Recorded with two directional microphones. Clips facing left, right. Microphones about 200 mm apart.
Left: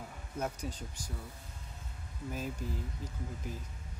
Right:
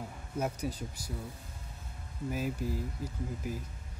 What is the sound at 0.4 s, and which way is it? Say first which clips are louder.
Speech: right 4 dB; 10° right (ahead or behind).